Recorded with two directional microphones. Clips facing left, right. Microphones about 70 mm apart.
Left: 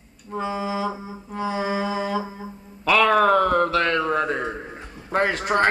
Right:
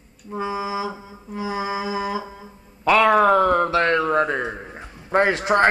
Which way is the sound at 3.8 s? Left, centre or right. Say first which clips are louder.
Right 3 dB; right.